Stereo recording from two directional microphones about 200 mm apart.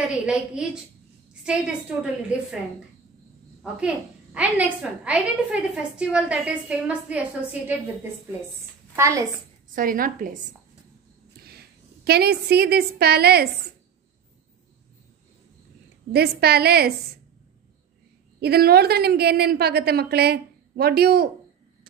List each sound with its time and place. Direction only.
0.1 s a woman's voice: 5° right (ahead or behind)
3.8 s a woman's voice: 5° right (ahead or behind)
8.9 s a woman's voice: 15° right (ahead or behind)
9.8 s a woman's voice: 45° right (ahead or behind)
11.4 s a woman's voice: 50° right (ahead or behind)
16.1 s a woman's voice: 55° right (ahead or behind)
18.4 s a woman's voice: 50° right (ahead or behind)